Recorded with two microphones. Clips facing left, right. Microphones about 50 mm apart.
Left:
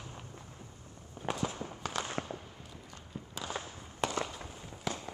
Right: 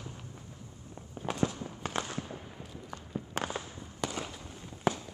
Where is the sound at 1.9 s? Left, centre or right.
Right.